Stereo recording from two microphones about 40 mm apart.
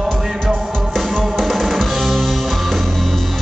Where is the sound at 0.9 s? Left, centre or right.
Centre.